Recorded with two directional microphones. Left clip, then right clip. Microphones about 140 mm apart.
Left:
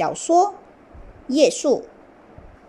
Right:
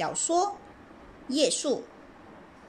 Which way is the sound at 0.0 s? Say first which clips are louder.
Left 9 dB; 20° left (ahead or behind).